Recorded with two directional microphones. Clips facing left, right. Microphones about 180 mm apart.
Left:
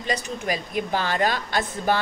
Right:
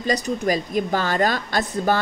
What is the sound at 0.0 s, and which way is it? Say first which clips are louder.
A woman's voice: right 6 dB; 40° right (ahead or behind).